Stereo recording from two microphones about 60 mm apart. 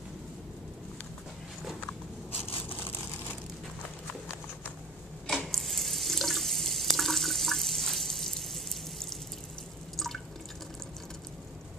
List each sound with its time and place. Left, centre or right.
5.2 s water tap: centre
9.9 s drip: centre